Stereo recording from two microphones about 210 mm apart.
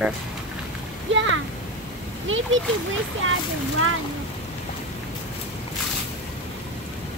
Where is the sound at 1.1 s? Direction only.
65° right (ahead or behind).